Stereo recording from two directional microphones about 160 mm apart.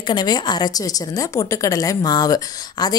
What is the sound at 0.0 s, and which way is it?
A woman's voice, 25° left (ahead or behind).